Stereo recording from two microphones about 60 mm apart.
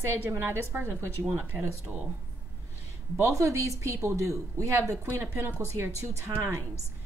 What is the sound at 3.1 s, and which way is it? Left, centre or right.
Speech, right.